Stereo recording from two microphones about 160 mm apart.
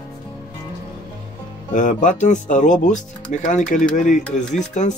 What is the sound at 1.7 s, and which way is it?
Speech, 55° left (ahead or behind).